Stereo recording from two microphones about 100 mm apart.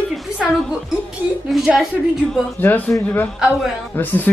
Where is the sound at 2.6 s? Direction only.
20° left (ahead or behind).